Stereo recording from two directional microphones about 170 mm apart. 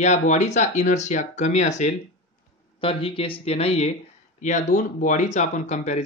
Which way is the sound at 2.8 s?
30° left (ahead or behind).